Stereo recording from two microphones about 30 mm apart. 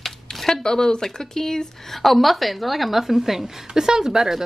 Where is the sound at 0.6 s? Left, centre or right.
Left.